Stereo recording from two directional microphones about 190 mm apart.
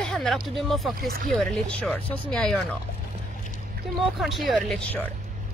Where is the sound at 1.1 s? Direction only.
45° right (ahead or behind).